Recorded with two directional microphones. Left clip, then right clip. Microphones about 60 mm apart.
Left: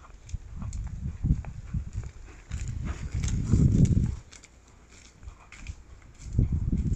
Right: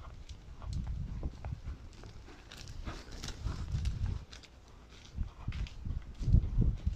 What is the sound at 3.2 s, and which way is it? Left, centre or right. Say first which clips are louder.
Horse: left 19 dB; left.